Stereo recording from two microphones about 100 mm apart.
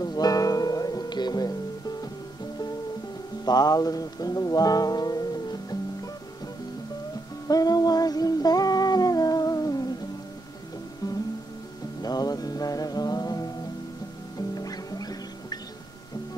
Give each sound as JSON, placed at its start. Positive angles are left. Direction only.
{"t": 0.0, "sound": "music", "side_deg": 40}
{"t": 3.4, "sound": "music", "side_deg": 40}
{"t": 7.4, "sound": "music", "side_deg": 40}
{"t": 12.0, "sound": "music", "side_deg": 40}
{"t": 14.5, "sound": "music", "side_deg": 40}